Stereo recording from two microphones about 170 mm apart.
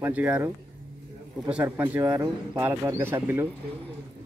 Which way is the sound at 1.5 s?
10° right (ahead or behind).